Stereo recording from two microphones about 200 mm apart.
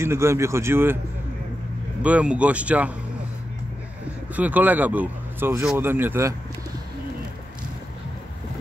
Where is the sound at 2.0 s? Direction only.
5° right (ahead or behind).